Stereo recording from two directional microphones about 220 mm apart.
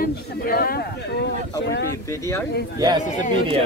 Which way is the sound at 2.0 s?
15° left (ahead or behind).